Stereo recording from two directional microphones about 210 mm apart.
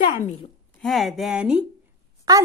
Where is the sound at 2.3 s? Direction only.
15° right (ahead or behind).